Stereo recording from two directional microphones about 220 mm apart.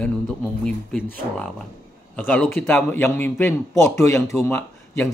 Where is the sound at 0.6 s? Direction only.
5° left (ahead or behind).